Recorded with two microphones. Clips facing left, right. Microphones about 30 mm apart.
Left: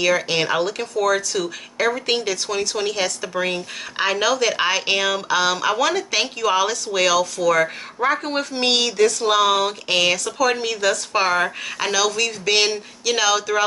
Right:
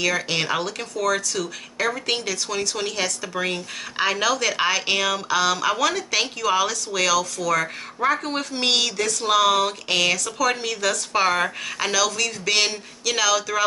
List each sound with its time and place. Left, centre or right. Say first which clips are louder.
0.0 s speech: left 4 dB; centre